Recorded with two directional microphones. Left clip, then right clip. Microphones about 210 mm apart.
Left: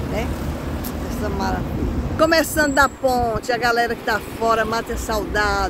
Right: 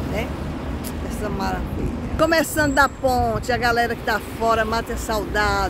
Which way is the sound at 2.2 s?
Centre (ahead or behind).